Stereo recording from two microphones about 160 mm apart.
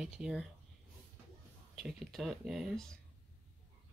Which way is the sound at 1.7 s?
Centre (ahead or behind).